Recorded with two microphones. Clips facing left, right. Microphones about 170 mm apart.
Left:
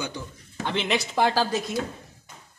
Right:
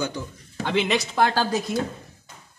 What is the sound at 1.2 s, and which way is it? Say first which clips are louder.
Speech: even; 10° left (ahead or behind).